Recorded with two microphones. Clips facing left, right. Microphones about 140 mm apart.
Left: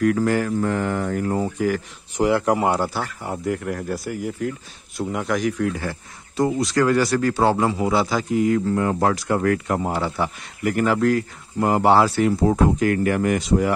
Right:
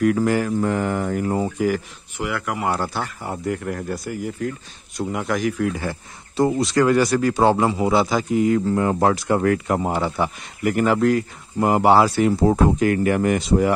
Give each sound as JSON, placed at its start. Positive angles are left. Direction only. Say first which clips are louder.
{"t": 0.0, "sound": "speech", "louder": "right 1 dB", "side_deg": -10}
{"t": 2.1, "sound": "speech", "louder": "left 7 dB", "side_deg": 35}
{"t": 2.7, "sound": "speech", "louder": "left 2 dB", "side_deg": 10}
{"t": 3.0, "sound": "speech", "louder": "even", "side_deg": 0}
{"t": 5.8, "sound": "speech", "louder": "right 1 dB", "side_deg": -25}
{"t": 12.3, "sound": "speech", "louder": "right 1 dB", "side_deg": -30}